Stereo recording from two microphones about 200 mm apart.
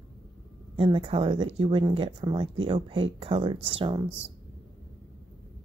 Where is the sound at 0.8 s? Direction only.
25° right (ahead or behind).